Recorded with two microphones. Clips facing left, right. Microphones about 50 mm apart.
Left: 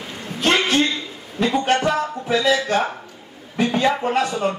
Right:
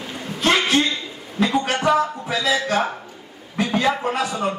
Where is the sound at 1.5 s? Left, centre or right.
Centre.